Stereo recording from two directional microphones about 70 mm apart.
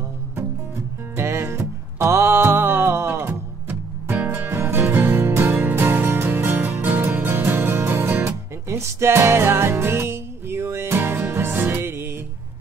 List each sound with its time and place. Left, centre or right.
1.1 s music: right